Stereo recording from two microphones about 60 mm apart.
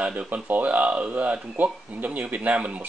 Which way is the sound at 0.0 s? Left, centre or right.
Right.